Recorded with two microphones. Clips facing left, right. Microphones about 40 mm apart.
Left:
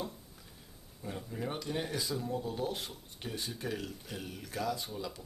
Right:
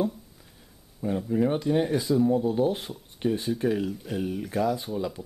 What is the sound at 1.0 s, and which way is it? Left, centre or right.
Speech, centre.